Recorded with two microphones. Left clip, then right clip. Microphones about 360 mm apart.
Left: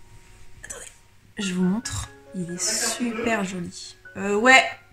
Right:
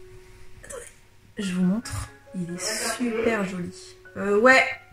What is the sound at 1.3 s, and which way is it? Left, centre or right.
Speech, centre.